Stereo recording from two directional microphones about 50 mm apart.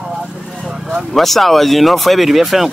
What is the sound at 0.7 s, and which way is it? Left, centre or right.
Vehicle, centre.